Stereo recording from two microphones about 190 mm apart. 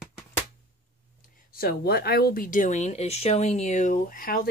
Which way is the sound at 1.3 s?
50° left (ahead or behind).